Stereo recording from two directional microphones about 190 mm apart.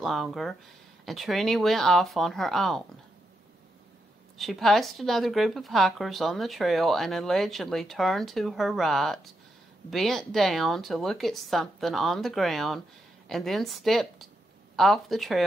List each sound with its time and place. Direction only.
0.0 s a woman's voice: centre (ahead or behind)
4.4 s a woman's voice: centre (ahead or behind)